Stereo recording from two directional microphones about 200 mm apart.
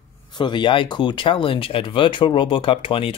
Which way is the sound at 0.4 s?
25° left (ahead or behind).